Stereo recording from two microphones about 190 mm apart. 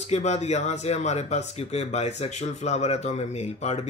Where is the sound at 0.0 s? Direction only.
35° left (ahead or behind).